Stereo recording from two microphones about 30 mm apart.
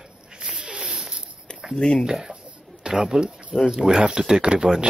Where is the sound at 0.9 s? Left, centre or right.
Right.